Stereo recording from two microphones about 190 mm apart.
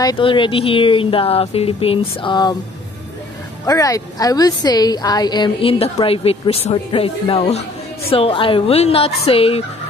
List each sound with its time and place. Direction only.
0.0 s a woman's voice: 25° left (ahead or behind)
3.6 s a woman's voice: 20° left (ahead or behind)